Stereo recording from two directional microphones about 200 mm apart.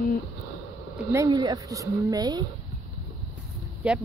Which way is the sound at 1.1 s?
20° right (ahead or behind).